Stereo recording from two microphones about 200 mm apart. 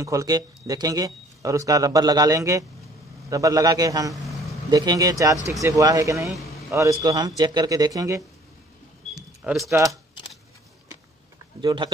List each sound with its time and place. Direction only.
0.0 s speech: 15° right (ahead or behind)
6.2 s a man's voice: centre (ahead or behind)
6.7 s speech: 15° right (ahead or behind)
9.4 s speech: 5° right (ahead or behind)
9.7 s speech: 15° right (ahead or behind)
11.6 s speech: 25° right (ahead or behind)